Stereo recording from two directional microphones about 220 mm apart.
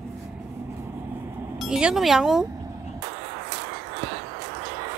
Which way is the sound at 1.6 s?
5° right (ahead or behind).